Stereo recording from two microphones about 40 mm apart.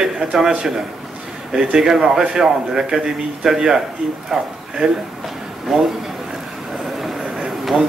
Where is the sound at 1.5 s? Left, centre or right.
Centre.